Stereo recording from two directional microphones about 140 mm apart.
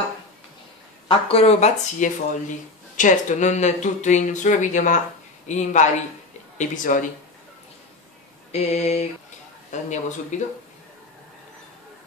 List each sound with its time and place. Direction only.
1.0 s speech: 45° left (ahead or behind); by 7.1 s 70° left (ahead or behind)
8.5 s speech: 50° left (ahead or behind)